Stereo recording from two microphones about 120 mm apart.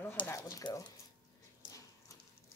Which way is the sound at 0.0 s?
20° left (ahead or behind).